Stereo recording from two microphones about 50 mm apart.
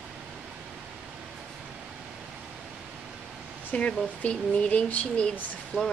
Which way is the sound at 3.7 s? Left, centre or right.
Left.